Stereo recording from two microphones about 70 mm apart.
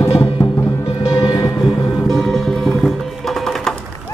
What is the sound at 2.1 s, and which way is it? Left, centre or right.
Music, centre.